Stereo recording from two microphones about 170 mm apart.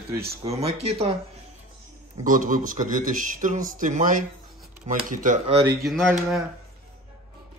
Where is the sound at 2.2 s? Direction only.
50° right (ahead or behind).